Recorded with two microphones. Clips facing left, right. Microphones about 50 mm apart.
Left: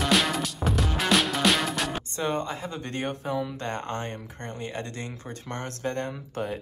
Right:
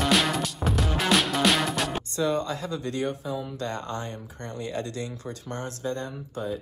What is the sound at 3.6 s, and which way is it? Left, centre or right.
Speech, left.